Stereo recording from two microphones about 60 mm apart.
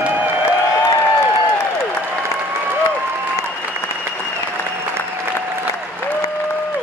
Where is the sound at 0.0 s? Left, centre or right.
Right.